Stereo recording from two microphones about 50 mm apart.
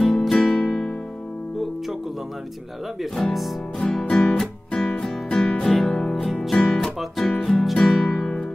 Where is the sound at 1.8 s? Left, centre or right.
Centre.